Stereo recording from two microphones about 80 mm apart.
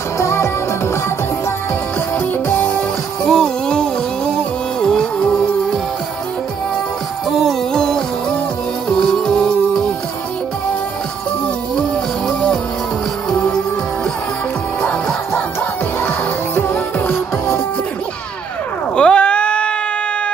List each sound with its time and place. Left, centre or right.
0.2 s music: left
2.5 s music: left
3.3 s music: centre
7.2 s music: centre
13.3 s music: centre
14.8 s music: centre
18.9 s a sound: centre